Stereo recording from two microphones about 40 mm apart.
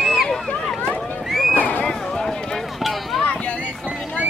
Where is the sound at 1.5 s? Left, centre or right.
Left.